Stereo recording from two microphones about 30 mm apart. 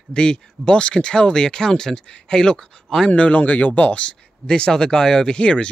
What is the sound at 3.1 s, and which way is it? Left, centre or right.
Speech, left.